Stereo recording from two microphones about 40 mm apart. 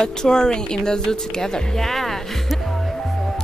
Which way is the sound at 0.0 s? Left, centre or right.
Centre.